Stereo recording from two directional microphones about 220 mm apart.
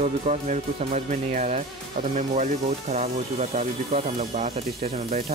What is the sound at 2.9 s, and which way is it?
Speech, 30° right (ahead or behind).